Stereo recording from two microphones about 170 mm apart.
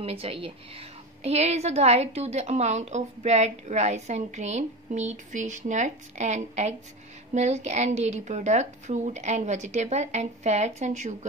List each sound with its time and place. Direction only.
0.0 s a woman's voice: 35° right (ahead or behind)